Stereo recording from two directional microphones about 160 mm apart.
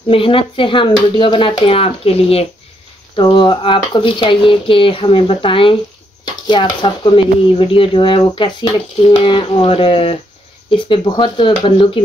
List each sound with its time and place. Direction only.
0.1 s speech: 35° left (ahead or behind)